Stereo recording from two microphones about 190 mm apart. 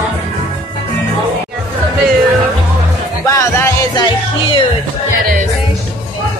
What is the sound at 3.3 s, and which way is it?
Music, 15° left (ahead or behind).